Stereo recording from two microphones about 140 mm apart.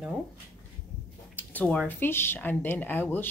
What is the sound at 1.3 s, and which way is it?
Speech, 10° left (ahead or behind).